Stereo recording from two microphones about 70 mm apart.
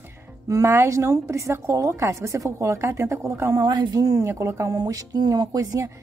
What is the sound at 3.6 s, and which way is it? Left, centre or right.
Speech, right.